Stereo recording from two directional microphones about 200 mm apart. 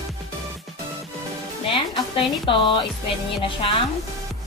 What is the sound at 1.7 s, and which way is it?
A woman's voice, 25° left (ahead or behind).